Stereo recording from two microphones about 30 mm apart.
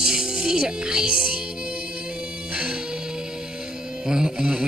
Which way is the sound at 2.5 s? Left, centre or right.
Right.